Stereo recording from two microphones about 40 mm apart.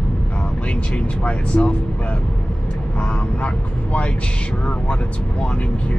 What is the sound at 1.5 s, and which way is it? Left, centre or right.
Speech, left.